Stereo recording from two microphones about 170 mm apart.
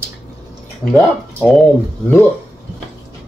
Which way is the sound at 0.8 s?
10° left (ahead or behind).